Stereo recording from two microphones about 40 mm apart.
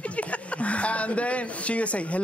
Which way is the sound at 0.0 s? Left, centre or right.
Left.